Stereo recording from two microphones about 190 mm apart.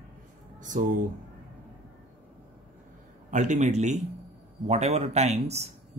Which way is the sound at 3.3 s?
40° right (ahead or behind).